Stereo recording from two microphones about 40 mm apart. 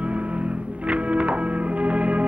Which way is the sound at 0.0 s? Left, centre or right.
Right.